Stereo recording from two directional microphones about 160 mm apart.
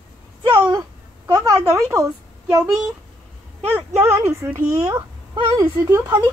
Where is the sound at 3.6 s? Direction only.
15° right (ahead or behind).